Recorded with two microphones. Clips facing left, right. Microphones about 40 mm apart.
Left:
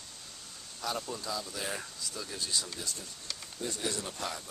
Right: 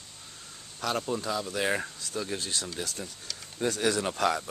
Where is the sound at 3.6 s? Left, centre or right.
Right.